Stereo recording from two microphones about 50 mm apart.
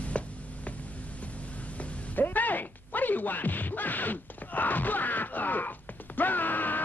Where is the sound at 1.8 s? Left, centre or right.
Left.